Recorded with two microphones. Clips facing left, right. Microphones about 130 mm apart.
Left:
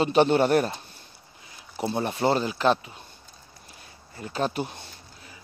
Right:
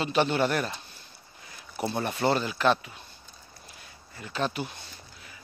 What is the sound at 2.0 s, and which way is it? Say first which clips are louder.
Speech: left 2 dB; 30° left (ahead or behind).